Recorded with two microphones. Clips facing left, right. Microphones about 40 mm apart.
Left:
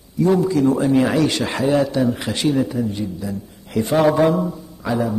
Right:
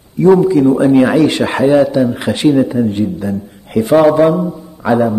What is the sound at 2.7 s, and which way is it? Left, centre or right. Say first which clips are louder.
Speech: right 8 dB; right.